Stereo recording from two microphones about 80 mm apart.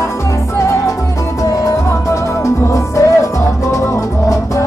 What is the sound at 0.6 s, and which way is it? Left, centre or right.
Music, left.